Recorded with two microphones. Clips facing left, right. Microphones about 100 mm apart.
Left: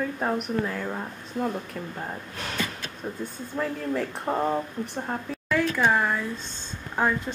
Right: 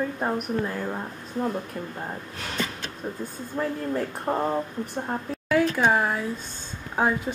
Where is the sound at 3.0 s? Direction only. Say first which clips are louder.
Right 1 dB; centre (ahead or behind).